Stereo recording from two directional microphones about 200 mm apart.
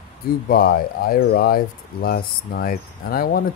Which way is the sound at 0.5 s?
50° left (ahead or behind).